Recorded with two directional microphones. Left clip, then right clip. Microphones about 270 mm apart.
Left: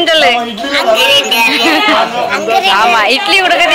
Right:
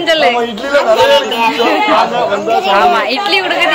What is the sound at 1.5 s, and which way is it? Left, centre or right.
Speech, centre.